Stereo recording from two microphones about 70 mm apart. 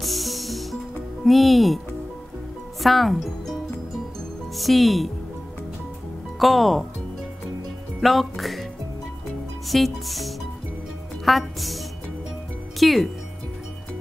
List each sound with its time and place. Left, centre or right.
0.0 s music: centre
2.8 s speech: centre
4.6 s music: centre
6.4 s music: centre
8.0 s speech: centre
9.7 s music: centre
12.7 s speech: centre